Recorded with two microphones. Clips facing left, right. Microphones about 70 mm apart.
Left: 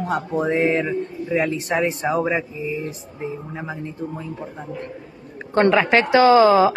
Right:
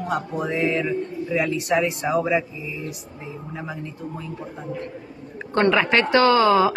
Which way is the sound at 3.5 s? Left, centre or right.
Left.